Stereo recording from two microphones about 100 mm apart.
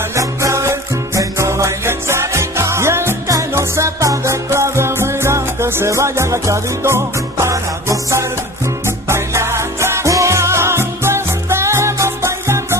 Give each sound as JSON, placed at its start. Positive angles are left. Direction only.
{"t": 0.1, "sound": "music", "side_deg": -30}